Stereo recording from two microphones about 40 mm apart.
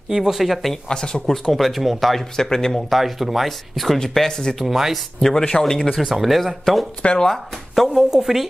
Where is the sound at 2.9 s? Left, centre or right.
Centre.